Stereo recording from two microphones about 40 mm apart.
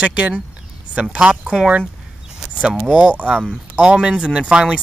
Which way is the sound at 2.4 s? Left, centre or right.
Right.